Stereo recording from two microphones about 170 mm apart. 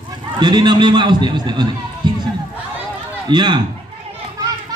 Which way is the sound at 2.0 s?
25° right (ahead or behind).